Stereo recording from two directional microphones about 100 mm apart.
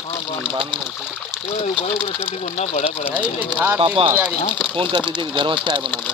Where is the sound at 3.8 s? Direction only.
60° right (ahead or behind).